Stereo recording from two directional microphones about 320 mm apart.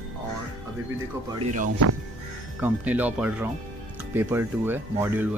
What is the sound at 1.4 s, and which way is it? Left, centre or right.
Speech, right.